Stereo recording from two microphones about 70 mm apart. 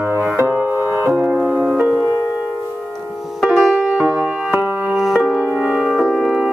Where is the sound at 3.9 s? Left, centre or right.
Right.